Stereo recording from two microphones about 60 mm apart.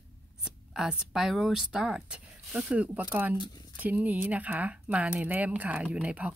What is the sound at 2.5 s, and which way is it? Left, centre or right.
Speech, right.